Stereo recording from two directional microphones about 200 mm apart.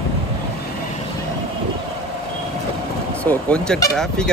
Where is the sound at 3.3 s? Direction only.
5° left (ahead or behind).